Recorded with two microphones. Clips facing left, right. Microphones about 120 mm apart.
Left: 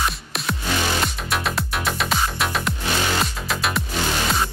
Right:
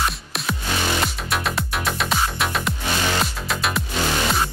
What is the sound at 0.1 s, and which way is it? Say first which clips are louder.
Music: even; centre (ahead or behind).